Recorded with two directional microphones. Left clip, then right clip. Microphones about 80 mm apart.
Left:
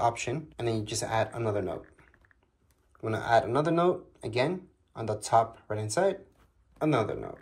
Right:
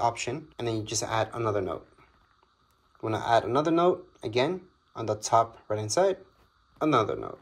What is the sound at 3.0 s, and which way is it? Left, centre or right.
Speech, right.